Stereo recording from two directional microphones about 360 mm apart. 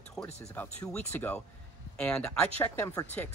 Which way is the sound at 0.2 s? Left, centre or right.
Centre.